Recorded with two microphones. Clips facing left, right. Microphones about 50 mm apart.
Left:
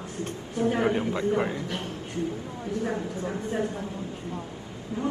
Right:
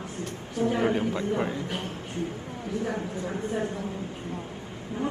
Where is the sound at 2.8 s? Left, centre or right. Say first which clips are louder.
Left 1 dB; left.